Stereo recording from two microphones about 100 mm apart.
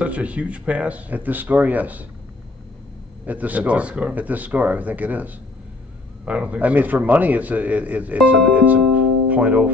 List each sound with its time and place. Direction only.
0.0 s a man's voice: 15° right (ahead or behind)
3.3 s a man's voice: 15° right (ahead or behind)
8.5 s music: 15° right (ahead or behind)